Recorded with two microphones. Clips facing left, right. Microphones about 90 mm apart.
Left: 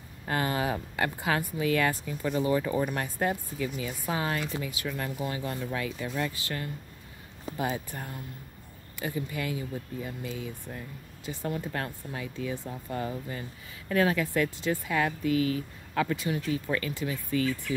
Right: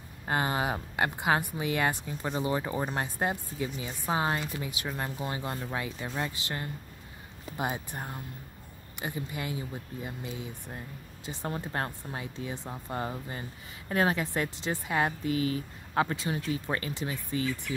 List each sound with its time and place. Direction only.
0.3 s speech: 25° right (ahead or behind)
11.4 s speech: 35° right (ahead or behind)